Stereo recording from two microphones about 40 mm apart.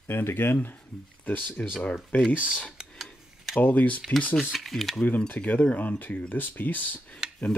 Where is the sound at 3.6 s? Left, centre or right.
Left.